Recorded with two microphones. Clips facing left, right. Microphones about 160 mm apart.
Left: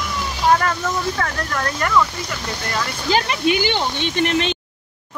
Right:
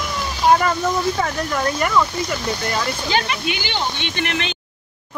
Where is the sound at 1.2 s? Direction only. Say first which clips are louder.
Right 2 dB; 10° right (ahead or behind).